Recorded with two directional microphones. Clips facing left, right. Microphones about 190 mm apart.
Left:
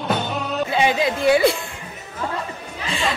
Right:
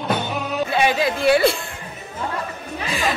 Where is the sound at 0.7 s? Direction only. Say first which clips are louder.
Even; 20° left (ahead or behind).